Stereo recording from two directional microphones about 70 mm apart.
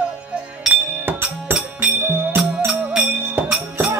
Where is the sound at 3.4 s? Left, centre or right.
Right.